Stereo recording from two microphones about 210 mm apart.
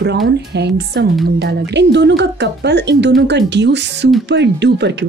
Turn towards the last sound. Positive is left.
turn(degrees=-55)  # may be behind; listen again after turning